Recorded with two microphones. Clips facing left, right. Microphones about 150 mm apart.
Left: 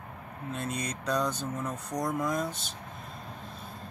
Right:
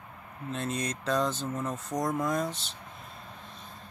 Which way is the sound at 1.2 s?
25° right (ahead or behind).